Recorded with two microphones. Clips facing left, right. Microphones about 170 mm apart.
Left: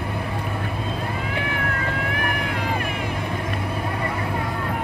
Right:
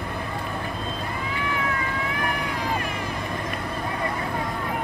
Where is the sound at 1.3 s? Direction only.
60° left (ahead or behind).